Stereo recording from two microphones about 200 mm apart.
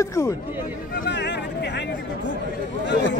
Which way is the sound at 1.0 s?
60° left (ahead or behind).